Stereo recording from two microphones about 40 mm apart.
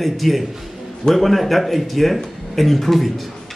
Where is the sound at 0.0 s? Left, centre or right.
Centre.